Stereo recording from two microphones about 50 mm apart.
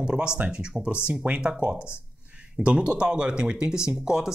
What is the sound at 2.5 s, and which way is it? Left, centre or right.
Speech, right.